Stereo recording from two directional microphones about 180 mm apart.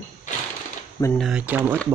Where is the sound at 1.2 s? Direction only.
5° right (ahead or behind).